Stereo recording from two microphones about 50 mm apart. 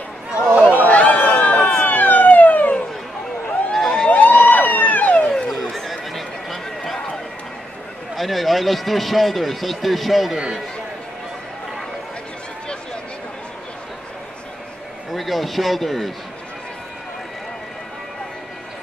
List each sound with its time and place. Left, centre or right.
0.7 s run: left
1.7 s police car: left
3.7 s emergency vehicle: centre
4.1 s emergency vehicle: left
5.3 s neigh: centre
8.2 s speech: centre
10.3 s speech: centre
15.1 s speech: centre